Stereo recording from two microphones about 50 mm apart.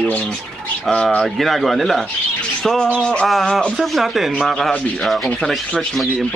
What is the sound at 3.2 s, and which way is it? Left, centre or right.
Speech, centre.